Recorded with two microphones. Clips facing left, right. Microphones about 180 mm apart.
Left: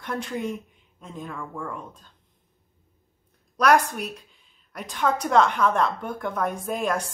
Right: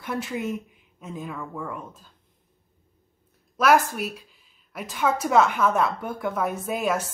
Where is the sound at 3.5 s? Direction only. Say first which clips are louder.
Even; 5° right (ahead or behind).